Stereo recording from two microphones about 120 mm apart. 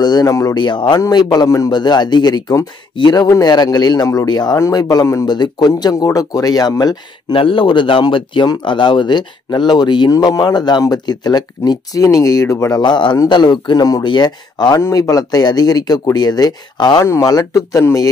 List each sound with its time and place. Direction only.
0.0 s speech: 35° left (ahead or behind)
0.6 s speech: 40° left (ahead or behind)
7.3 s speech: 45° left (ahead or behind)
17.0 s speech: 25° left (ahead or behind)